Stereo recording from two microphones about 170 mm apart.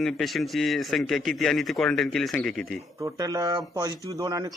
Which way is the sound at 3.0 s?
20° right (ahead or behind).